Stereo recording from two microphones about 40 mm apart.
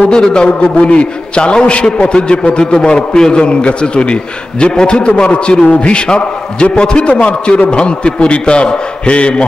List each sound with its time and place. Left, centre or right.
0.1 s a man's voice: left
2.6 s a man's voice: left